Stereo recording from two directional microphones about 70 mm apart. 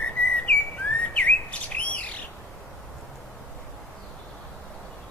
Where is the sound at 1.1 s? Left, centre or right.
Centre.